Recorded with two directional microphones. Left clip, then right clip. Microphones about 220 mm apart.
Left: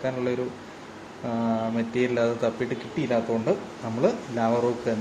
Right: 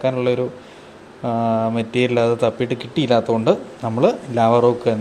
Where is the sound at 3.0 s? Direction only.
45° right (ahead or behind).